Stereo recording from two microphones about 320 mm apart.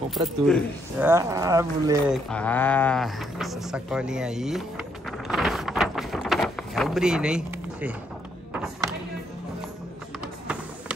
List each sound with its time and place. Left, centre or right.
0.1 s speech: centre
2.2 s speech: centre
5.3 s a sound: centre